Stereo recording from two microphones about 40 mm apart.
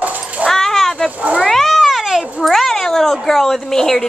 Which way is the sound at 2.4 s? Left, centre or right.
Centre.